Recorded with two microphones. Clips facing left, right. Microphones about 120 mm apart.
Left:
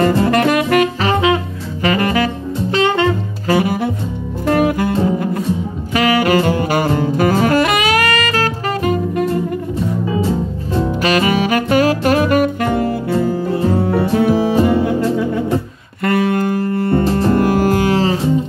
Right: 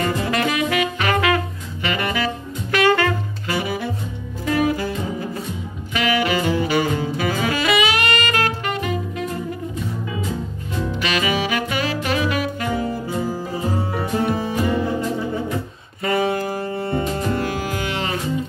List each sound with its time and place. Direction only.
0.1 s saxophone: 50° left (ahead or behind)
0.9 s saxophone: 25° left (ahead or behind)
1.8 s saxophone: 40° left (ahead or behind)
2.7 s saxophone: 25° left (ahead or behind)
3.4 s saxophone: 50° left (ahead or behind)
4.5 s music: 55° left (ahead or behind)
5.9 s saxophone: 45° left (ahead or behind)
10.0 s saxophone: 30° left (ahead or behind); by 17.0 s 60° left (ahead or behind)
17.3 s music: 50° left (ahead or behind); by 18.3 s 30° left (ahead or behind)